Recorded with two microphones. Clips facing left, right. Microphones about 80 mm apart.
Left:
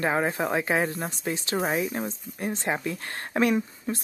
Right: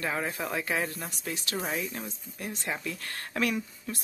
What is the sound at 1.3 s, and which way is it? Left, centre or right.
Speech, left.